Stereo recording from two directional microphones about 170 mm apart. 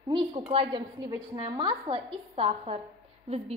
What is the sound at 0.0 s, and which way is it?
A woman's voice, 30° right (ahead or behind).